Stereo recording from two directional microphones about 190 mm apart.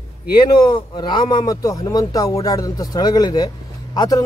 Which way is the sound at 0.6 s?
25° left (ahead or behind).